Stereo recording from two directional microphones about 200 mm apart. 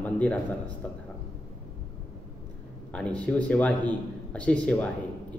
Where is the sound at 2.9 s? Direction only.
5° left (ahead or behind).